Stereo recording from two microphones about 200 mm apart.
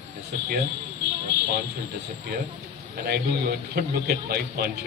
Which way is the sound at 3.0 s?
50° right (ahead or behind).